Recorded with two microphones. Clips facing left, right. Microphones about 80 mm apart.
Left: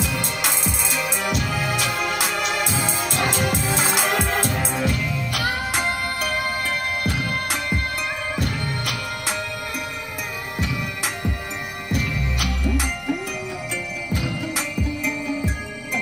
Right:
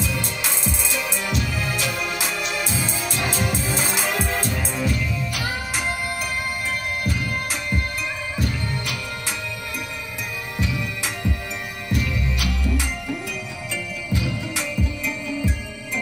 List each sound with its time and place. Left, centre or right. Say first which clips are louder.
0.0 s music: left 2 dB; left
0.7 s music: left 1 dB; left
2.8 s music: left 3 dB; left
4.0 s music: left 2 dB; left
8.5 s music: left 1 dB; left
11.9 s music: even; left